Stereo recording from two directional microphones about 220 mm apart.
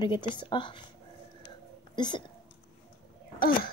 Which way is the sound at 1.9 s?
20° left (ahead or behind).